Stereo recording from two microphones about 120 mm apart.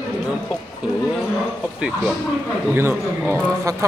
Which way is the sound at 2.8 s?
20° right (ahead or behind).